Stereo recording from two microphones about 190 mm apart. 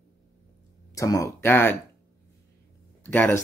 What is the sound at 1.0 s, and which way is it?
Speech, 15° left (ahead or behind).